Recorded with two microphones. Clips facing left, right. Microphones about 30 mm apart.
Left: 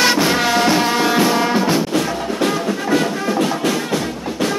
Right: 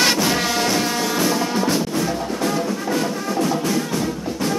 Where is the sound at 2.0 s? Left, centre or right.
Left.